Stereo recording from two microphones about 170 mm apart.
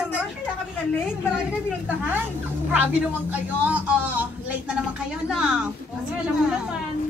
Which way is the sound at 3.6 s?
10° right (ahead or behind).